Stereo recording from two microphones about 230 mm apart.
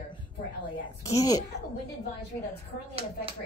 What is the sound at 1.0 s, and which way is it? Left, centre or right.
Speech, centre.